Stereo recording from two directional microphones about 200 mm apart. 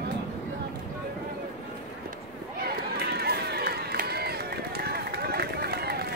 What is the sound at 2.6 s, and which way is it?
Run, 50° right (ahead or behind).